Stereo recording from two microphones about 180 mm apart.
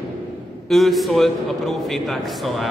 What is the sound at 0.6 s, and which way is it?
A man's voice, centre (ahead or behind).